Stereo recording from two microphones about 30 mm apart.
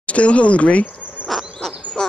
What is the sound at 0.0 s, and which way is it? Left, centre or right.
Speech, left.